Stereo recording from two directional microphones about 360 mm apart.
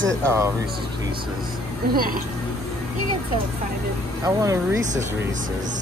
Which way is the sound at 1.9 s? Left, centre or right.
Right.